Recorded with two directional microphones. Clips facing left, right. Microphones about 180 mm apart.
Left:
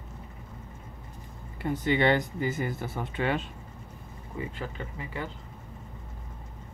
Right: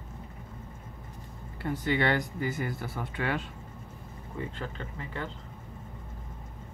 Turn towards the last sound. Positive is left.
turn(degrees=10)  # may be behind; listen again after turning